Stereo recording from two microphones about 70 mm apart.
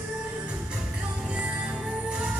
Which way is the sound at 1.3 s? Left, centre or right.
Centre.